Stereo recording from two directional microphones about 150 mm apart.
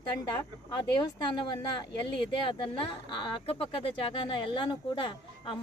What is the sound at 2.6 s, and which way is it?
Speech, 35° left (ahead or behind).